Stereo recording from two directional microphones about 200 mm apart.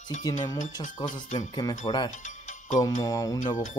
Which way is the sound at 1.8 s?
20° left (ahead or behind).